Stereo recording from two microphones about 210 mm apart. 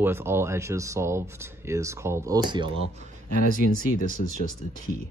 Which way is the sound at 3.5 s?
40° left (ahead or behind).